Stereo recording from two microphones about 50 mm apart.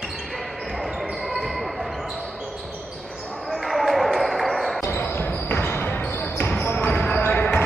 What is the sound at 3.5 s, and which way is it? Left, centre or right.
Basketball bounce, centre.